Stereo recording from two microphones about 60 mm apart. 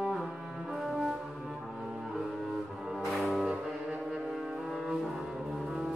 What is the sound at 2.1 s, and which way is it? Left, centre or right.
Cello, centre.